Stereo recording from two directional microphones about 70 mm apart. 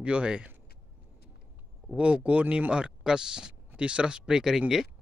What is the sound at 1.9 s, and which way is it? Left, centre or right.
Speech, centre.